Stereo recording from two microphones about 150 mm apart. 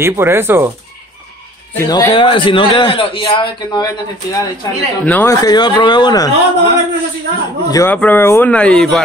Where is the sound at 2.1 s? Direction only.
35° left (ahead or behind).